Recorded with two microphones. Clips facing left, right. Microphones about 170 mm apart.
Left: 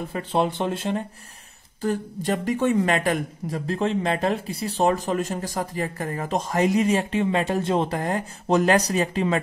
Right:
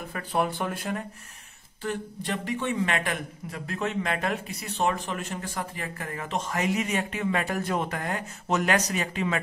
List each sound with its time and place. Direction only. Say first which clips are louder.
0.1 s speech: left 3 dB; 25° left (ahead or behind)
1.8 s speech: left 6 dB; 40° left (ahead or behind)